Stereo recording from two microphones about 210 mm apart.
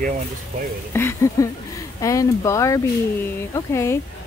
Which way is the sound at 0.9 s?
10° left (ahead or behind).